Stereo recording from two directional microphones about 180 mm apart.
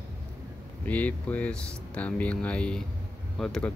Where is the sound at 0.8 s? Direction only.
10° left (ahead or behind).